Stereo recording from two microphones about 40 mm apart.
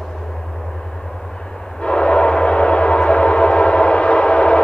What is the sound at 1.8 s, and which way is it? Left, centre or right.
Train, left.